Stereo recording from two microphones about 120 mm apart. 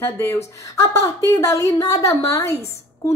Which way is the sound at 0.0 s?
15° left (ahead or behind).